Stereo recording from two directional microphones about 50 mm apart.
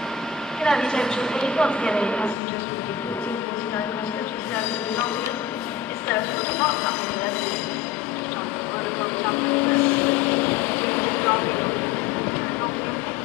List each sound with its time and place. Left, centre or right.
0.7 s speech: centre
6.0 s speech: left
9.2 s vehicle: left